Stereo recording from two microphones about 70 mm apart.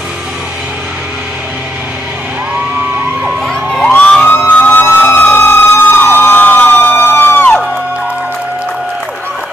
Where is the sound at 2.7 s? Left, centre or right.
Right.